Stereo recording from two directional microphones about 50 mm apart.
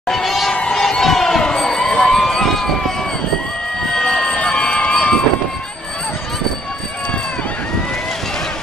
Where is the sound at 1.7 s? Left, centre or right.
Centre.